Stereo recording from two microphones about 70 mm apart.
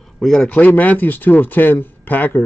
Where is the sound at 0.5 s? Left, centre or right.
Left.